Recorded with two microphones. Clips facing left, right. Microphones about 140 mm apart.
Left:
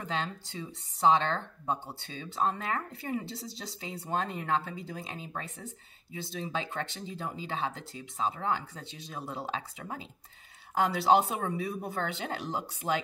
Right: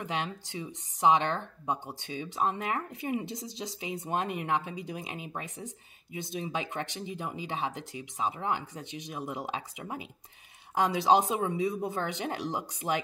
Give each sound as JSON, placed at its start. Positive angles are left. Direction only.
{"t": 0.0, "sound": "speech", "side_deg": -15}